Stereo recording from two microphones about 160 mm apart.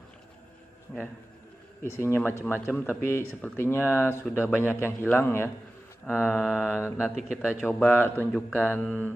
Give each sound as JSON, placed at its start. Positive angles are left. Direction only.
{"t": 1.8, "sound": "speech", "side_deg": 15}